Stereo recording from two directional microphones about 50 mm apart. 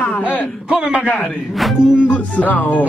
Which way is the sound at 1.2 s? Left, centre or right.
Centre.